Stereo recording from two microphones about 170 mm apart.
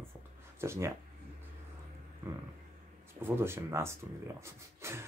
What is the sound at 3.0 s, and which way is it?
Speech, 15° right (ahead or behind).